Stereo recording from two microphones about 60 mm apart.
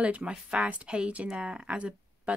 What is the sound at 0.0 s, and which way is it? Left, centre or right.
Speech, centre.